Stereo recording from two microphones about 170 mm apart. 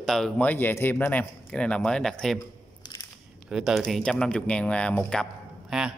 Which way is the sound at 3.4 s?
Centre (ahead or behind).